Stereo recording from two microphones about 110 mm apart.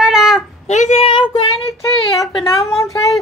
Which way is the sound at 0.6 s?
90° left.